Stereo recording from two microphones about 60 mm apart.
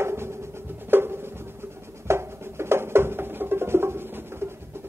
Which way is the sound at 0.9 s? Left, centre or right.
Right.